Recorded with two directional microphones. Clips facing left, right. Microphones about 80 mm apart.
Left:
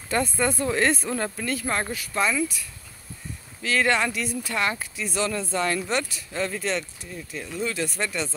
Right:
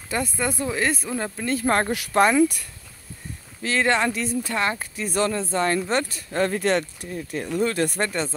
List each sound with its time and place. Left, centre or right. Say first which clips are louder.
0.1 s speech: left 2 dB; centre
1.4 s speech: right 4 dB; right
1.7 s speech: right 6 dB; right
3.6 s speech: right 1 dB; right